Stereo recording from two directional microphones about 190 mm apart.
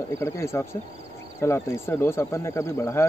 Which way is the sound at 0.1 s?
15° left (ahead or behind).